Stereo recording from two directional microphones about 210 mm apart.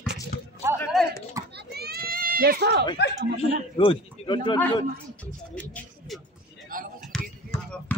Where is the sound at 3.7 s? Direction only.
25° left (ahead or behind).